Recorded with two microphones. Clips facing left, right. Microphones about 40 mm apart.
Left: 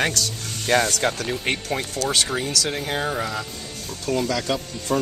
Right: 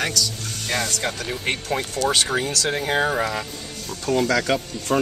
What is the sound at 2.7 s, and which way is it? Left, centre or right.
Speech, centre.